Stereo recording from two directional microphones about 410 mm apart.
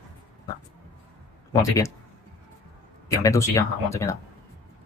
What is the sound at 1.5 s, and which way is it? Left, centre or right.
Speech, centre.